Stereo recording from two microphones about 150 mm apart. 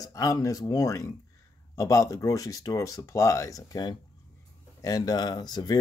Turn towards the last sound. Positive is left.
turn(degrees=30)  # may be behind; listen again after turning